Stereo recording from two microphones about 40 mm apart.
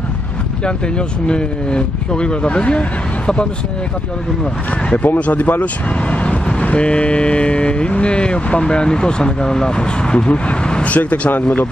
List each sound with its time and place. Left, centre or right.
0.7 s speech: left
4.9 s speech: left
6.6 s speech: left
11.0 s speech: left